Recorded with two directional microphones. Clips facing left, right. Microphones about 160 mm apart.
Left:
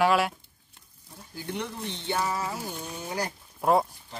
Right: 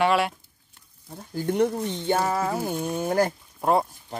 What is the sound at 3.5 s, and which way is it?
Speech, centre (ahead or behind).